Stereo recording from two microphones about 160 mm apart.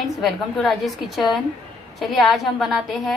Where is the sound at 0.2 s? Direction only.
Centre (ahead or behind).